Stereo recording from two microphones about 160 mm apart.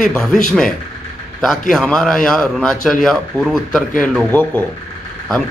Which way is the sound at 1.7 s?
5° left (ahead or behind).